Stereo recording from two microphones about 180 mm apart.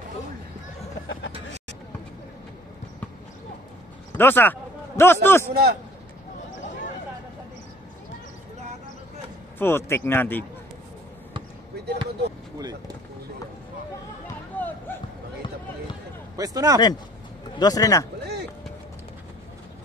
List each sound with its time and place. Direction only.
1.3 s vehicle: 35° right (ahead or behind)
4.2 s speech: 10° left (ahead or behind)
5.5 s a man's voice: 60° right (ahead or behind)
9.6 s speech: 15° left (ahead or behind)
14.5 s a sound: 10° left (ahead or behind)
16.3 s a man's voice: 20° right (ahead or behind)
17.6 s speech: 20° left (ahead or behind)
18.2 s a sound: 65° right (ahead or behind)